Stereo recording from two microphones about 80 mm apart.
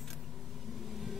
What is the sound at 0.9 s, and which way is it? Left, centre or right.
Vehicle, centre.